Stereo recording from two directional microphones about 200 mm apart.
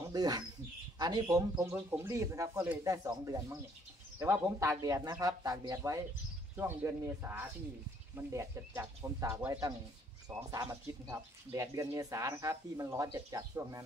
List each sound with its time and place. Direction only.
0.1 s speech: 20° right (ahead or behind)